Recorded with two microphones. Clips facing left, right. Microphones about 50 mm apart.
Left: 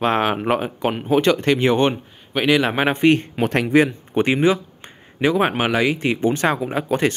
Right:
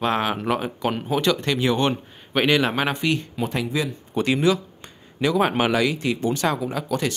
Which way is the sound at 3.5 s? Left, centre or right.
Left.